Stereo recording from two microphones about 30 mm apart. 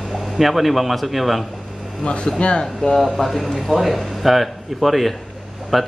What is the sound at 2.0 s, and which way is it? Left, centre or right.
Speech, left.